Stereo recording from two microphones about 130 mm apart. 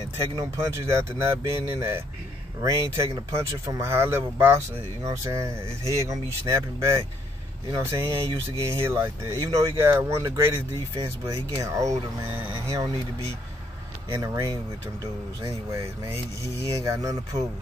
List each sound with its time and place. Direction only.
0.4 s speech: 20° right (ahead or behind)
14.1 s speech: 25° right (ahead or behind)